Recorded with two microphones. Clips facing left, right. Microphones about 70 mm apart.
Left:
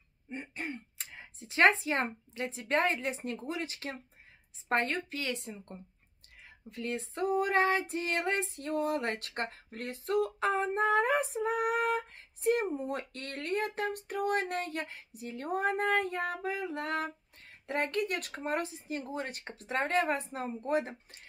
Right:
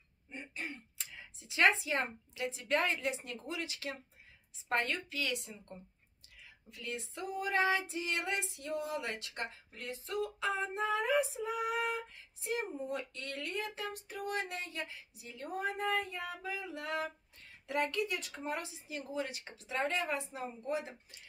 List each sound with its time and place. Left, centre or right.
0.3 s a woman's voice: left
6.4 s female singing: left
16.3 s a sound: left
18.4 s female singing: left